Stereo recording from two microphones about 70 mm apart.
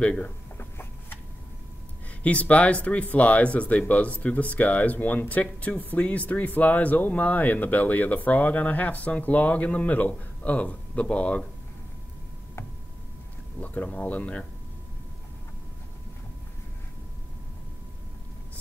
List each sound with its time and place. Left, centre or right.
0.0 s speech: centre
0.6 s a sound: left
2.2 s speech: centre
13.8 s speech: left